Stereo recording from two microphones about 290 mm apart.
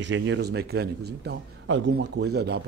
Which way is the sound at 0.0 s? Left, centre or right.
Right.